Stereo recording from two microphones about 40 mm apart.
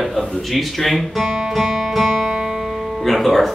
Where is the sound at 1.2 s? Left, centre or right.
Centre.